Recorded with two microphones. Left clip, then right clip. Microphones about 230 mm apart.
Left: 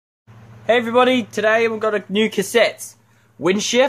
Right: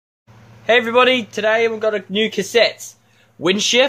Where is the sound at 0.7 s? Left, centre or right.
Centre.